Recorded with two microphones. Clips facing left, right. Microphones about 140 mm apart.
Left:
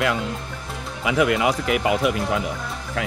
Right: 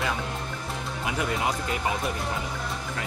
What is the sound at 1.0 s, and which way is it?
Speech, 75° left (ahead or behind).